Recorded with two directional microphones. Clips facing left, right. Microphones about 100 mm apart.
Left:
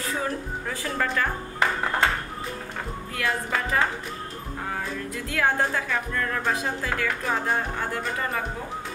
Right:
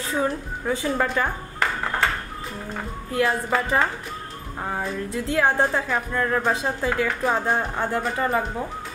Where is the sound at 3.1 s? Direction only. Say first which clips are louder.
Right 6 dB; 25° right (ahead or behind).